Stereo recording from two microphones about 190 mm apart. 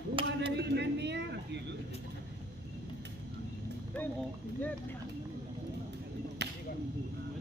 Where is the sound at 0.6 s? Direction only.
65° right (ahead or behind).